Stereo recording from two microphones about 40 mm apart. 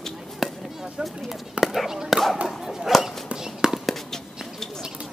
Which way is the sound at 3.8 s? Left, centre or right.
Centre.